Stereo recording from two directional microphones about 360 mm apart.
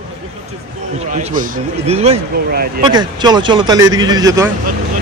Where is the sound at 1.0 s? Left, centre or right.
Centre.